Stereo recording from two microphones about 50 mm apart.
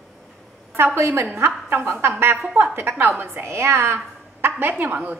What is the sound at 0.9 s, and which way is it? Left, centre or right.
Speech, right.